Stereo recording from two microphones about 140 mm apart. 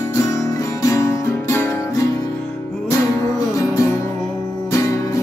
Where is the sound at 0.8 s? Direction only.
20° left (ahead or behind).